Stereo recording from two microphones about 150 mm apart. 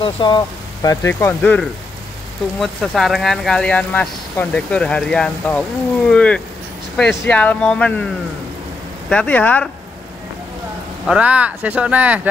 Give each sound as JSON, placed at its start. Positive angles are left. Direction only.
{"t": 0.0, "sound": "speech", "side_deg": 30}
{"t": 0.8, "sound": "speech", "side_deg": 15}
{"t": 9.1, "sound": "speech", "side_deg": 10}
{"t": 11.1, "sound": "speech", "side_deg": -10}